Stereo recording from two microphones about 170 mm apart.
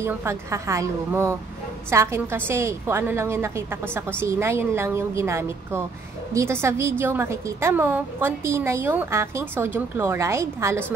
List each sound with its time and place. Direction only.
0.0 s a woman's voice: 15° right (ahead or behind)